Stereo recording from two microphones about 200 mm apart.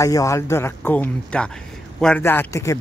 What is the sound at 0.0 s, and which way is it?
Speech, 15° left (ahead or behind).